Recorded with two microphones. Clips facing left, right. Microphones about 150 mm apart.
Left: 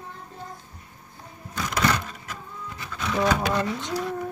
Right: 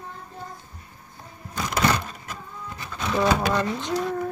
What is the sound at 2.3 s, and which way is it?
Printer, 30° right (ahead or behind).